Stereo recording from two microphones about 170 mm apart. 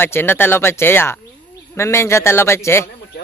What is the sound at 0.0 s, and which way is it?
Speech, 10° left (ahead or behind).